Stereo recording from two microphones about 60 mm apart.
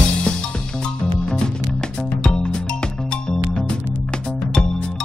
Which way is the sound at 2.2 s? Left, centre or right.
Centre.